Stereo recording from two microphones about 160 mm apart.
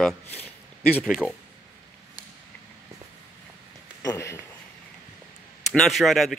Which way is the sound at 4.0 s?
20° left (ahead or behind).